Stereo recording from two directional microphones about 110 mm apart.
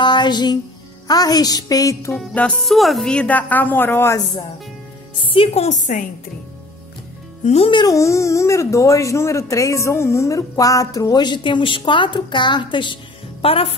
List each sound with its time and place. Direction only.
0.0 s music: 45° left (ahead or behind)
1.0 s speech: 35° left (ahead or behind)
2.1 s a woman's voice: 10° left (ahead or behind)
5.2 s a woman's voice: 55° left (ahead or behind)
7.4 s speech: 70° left (ahead or behind)
7.7 s speech: 35° left (ahead or behind); by 13.7 s 60° left (ahead or behind)